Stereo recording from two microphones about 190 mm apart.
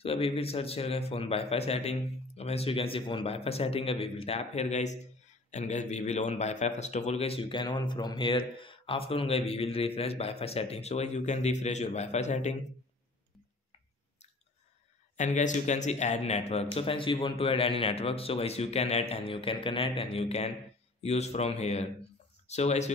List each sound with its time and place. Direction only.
0.0 s a man's voice: 30° left (ahead or behind)
15.1 s a man's voice: 40° left (ahead or behind)